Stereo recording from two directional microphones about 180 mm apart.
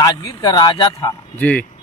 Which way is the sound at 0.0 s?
20° left (ahead or behind).